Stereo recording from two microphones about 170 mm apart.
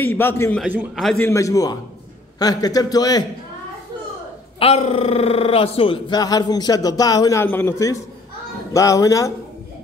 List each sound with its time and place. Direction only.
0.0 s a man's voice: 15° left (ahead or behind)
0.7 s a man's voice: 10° right (ahead or behind)
1.0 s a man's voice: 10° left (ahead or behind)
4.6 s speech: 35° left (ahead or behind); by 9.3 s 20° left (ahead or behind)